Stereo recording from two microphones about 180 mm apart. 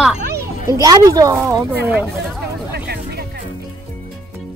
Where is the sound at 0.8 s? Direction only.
20° right (ahead or behind).